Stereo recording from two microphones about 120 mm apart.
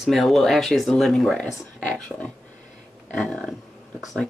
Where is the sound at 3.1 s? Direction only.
5° left (ahead or behind).